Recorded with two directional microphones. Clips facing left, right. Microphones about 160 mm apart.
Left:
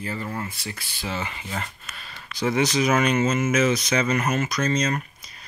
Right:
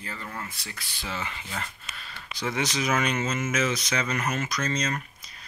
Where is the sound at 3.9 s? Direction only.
30° left (ahead or behind).